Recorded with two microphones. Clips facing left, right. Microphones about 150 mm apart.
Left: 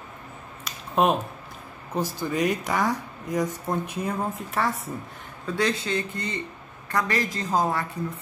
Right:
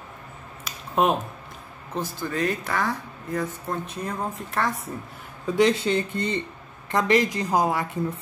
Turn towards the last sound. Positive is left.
turn(degrees=-15)  # may be behind; listen again after turning